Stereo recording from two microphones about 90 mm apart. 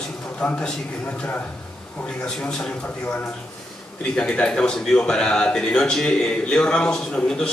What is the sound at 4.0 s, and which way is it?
Speech, 15° left (ahead or behind).